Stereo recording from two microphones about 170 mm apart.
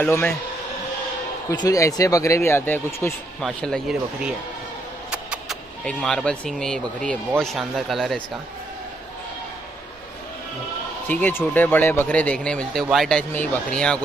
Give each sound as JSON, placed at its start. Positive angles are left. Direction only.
{"t": 0.0, "sound": "speech", "side_deg": 10}
{"t": 1.5, "sound": "speech", "side_deg": 20}
{"t": 5.1, "sound": "vehicle", "side_deg": -5}
{"t": 5.9, "sound": "speech", "side_deg": 5}
{"t": 11.1, "sound": "speech", "side_deg": 10}